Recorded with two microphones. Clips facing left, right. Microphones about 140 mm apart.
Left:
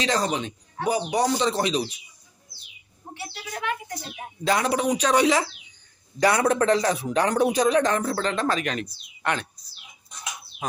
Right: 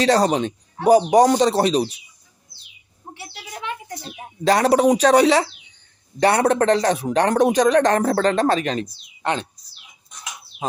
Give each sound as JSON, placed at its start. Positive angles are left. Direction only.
{"t": 0.0, "sound": "speech", "side_deg": -40}
{"t": 4.5, "sound": "speech", "side_deg": -40}
{"t": 6.5, "sound": "speech", "side_deg": -70}
{"t": 7.5, "sound": "speech", "side_deg": -80}
{"t": 8.2, "sound": "speech", "side_deg": -40}
{"t": 10.6, "sound": "speech", "side_deg": -25}